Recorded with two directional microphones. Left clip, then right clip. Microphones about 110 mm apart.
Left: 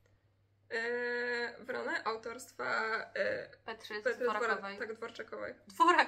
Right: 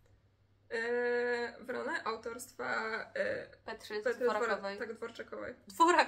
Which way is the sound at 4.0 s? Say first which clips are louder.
Right 1 dB; 15° left (ahead or behind).